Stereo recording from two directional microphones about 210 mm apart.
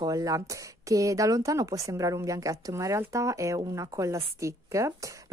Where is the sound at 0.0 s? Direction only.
15° right (ahead or behind).